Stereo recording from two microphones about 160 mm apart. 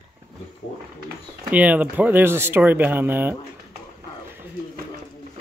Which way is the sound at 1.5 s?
10° right (ahead or behind).